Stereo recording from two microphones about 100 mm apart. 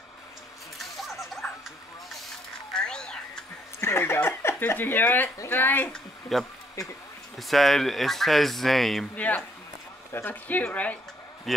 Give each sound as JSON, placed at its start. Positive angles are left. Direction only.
{"t": 0.7, "sound": "a sound", "side_deg": 0}
{"t": 2.7, "sound": "a sound", "side_deg": 10}
{"t": 3.8, "sound": "speech", "side_deg": 25}
{"t": 6.3, "sound": "speech", "side_deg": 0}
{"t": 9.1, "sound": "a woman's voice", "side_deg": 15}
{"t": 11.5, "sound": "speech", "side_deg": 0}